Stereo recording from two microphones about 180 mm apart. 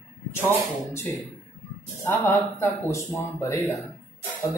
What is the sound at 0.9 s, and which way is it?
Speech, 15° left (ahead or behind).